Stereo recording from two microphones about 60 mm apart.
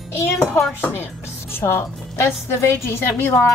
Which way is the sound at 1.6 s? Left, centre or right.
Left.